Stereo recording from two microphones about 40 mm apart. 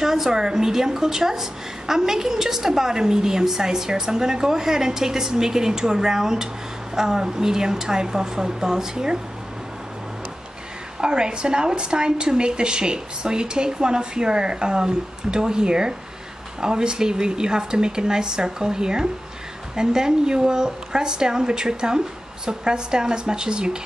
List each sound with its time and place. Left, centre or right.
0.0 s a woman's voice: centre
11.0 s speech: right